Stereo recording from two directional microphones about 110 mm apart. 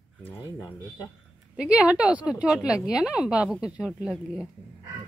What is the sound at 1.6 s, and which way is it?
A woman's voice, 10° right (ahead or behind).